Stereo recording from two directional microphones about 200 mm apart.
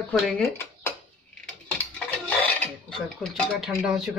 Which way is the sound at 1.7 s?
10° left (ahead or behind).